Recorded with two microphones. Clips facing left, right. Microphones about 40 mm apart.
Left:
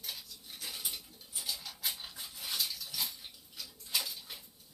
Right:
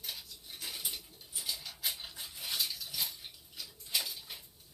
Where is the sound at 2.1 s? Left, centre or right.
Right.